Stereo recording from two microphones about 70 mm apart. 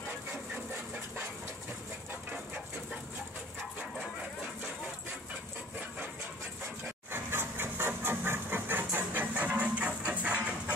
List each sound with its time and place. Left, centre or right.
7.1 s engine: right